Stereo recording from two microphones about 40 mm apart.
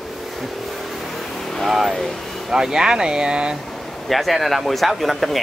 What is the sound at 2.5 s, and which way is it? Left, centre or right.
Speech, centre.